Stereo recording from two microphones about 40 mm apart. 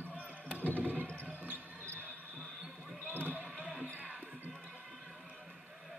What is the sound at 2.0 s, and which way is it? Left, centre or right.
Basketball bounce, right.